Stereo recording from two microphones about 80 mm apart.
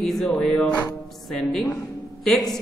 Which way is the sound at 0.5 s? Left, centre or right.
Centre.